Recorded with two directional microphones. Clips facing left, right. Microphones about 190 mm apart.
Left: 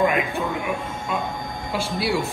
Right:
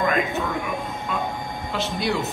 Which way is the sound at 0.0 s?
10° left (ahead or behind).